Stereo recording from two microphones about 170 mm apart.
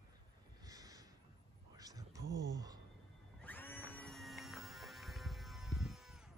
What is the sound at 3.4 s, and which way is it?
Music, 10° left (ahead or behind).